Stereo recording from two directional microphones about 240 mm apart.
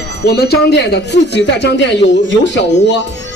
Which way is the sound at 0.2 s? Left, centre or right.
Left.